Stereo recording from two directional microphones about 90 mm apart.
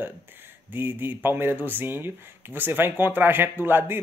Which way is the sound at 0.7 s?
20° right (ahead or behind).